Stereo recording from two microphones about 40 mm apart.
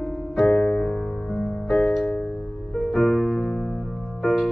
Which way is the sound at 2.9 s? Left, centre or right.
Centre.